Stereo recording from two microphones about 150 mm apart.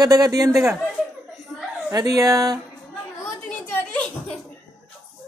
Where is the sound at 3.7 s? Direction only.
10° left (ahead or behind).